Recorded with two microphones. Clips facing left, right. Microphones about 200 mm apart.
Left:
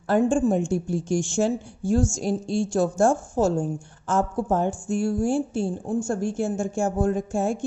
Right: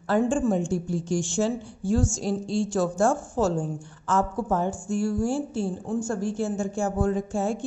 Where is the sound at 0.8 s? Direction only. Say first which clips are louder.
Left 2 dB; 45° left (ahead or behind).